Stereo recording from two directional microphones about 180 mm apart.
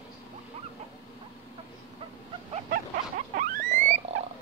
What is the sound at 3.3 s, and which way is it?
Rodents, 45° right (ahead or behind).